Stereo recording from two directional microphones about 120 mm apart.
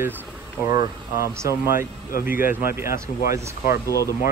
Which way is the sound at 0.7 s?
30° right (ahead or behind).